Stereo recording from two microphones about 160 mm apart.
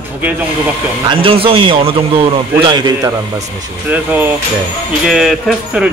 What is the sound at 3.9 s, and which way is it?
Speech, 10° right (ahead or behind).